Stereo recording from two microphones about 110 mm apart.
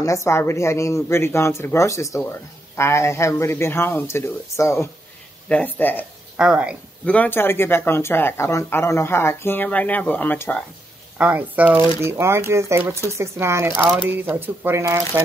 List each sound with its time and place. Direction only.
0.0 s speech: 25° left (ahead or behind)
5.5 s speech: 15° left (ahead or behind)
6.3 s speech: 5° right (ahead or behind)
7.1 s speech: 15° left (ahead or behind)
11.1 s speech: 15° right (ahead or behind)